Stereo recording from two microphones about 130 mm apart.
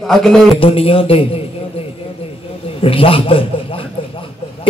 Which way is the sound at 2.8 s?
45° left (ahead or behind).